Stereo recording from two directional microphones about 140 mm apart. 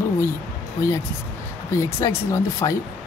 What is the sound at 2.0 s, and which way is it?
Speech, 20° left (ahead or behind).